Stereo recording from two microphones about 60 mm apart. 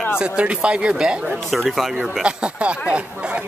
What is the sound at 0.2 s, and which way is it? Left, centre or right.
Speech, centre.